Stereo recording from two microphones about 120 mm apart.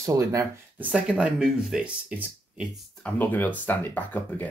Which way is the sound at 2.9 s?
10° left (ahead or behind).